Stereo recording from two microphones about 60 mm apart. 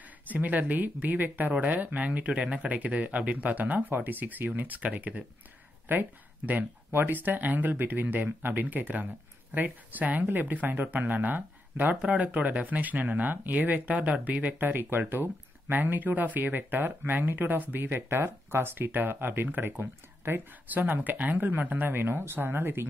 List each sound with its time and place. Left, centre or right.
0.3 s speech: right